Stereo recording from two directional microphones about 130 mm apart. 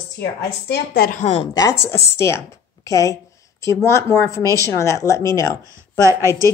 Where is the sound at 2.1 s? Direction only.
20° left (ahead or behind).